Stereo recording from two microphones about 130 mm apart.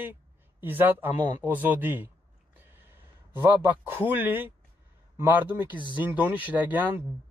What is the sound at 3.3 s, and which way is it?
A man's voice, 15° right (ahead or behind).